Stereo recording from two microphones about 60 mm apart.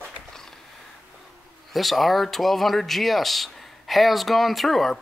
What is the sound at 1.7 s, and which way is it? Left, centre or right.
Speech, centre.